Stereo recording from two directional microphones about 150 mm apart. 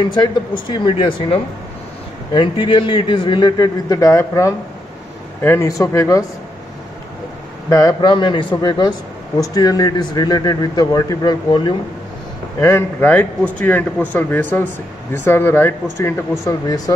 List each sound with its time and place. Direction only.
0.1 s a man's voice: 30° left (ahead or behind)
7.7 s a man's voice: 25° left (ahead or behind)
12.5 s speech: 15° left (ahead or behind)